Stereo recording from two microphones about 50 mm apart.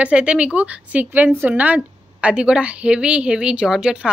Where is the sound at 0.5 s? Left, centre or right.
Right.